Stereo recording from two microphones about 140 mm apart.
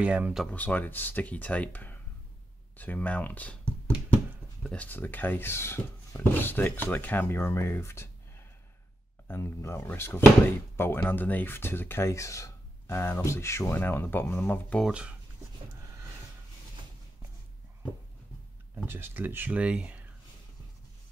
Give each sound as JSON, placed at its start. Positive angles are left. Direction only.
{"t": 0.0, "sound": "speech", "side_deg": -10}
{"t": 0.5, "sound": "speech", "side_deg": 10}
{"t": 4.6, "sound": "speech", "side_deg": 10}
{"t": 14.8, "sound": "speech", "side_deg": -5}
{"t": 15.8, "sound": "snort", "side_deg": -20}
{"t": 18.9, "sound": "speech", "side_deg": -15}